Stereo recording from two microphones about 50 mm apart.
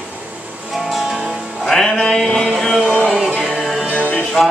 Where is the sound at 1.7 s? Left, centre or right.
Centre.